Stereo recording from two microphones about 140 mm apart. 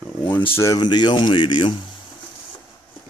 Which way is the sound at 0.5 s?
25° left (ahead or behind).